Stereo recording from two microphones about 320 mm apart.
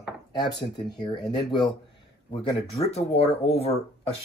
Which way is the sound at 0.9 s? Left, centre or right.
Centre.